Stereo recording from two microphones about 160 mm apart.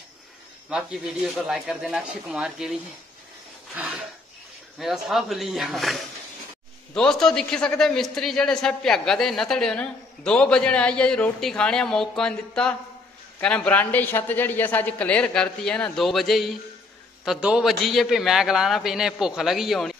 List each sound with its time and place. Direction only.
0.7 s a man's voice: 5° right (ahead or behind)
3.7 s a sound: 10° right (ahead or behind)
4.7 s a man's voice: centre (ahead or behind)